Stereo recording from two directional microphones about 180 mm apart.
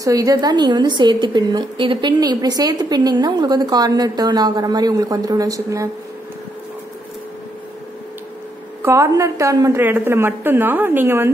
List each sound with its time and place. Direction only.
0.0 s a woman's voice: 20° right (ahead or behind)
8.8 s a woman's voice: 15° right (ahead or behind)